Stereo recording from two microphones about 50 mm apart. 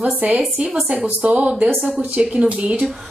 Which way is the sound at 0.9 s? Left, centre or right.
Right.